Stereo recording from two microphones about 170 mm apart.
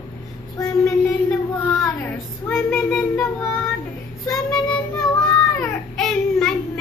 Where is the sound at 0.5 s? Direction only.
15° left (ahead or behind).